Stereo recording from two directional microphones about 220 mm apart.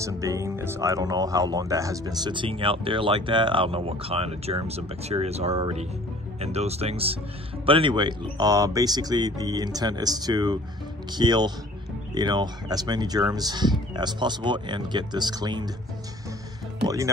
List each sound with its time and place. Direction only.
0.0 s speech: 15° right (ahead or behind)
16.8 s speech: 15° right (ahead or behind)